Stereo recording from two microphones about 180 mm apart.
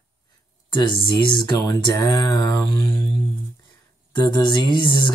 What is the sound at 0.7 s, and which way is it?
Speech, 25° left (ahead or behind).